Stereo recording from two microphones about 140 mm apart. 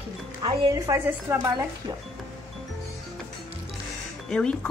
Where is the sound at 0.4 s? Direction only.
25° right (ahead or behind).